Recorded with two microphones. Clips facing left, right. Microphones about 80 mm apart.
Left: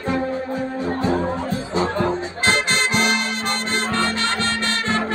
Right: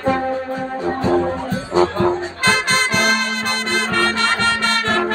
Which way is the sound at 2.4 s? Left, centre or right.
Right.